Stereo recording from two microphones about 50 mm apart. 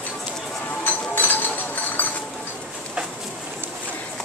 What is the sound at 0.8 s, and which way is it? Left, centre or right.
Chink, left.